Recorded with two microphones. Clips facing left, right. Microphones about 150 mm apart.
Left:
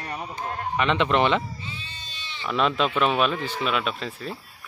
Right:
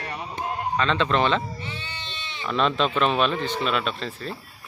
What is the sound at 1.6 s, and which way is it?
Sheep, 70° right (ahead or behind).